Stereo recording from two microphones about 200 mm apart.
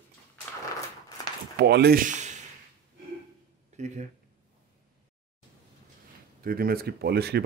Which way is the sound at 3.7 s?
35° right (ahead or behind).